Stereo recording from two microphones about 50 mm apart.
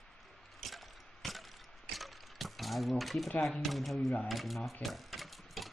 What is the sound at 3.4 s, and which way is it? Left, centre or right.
Speech, centre.